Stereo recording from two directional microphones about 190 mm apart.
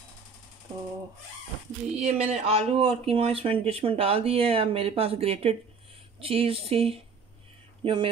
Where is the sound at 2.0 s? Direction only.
35° right (ahead or behind).